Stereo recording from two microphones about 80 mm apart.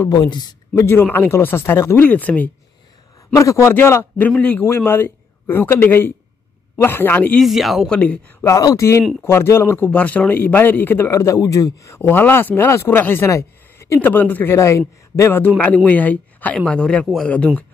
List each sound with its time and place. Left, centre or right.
0.1 s speech: left
0.7 s a man's voice: left
3.3 s speech: left
3.7 s a man's voice: left
7.3 s speech: centre
7.9 s speech: centre
8.5 s speech: left
9.8 s a man's voice: centre
11.1 s speech: left
13.3 s a sound: left
14.0 s a man's voice: left
16.5 s speech: centre